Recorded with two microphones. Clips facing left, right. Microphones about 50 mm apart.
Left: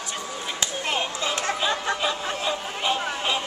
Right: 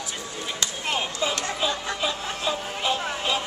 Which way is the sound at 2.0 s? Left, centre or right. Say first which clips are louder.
Left 2 dB; centre.